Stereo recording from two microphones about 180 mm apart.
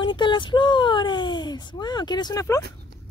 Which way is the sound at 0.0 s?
25° left (ahead or behind).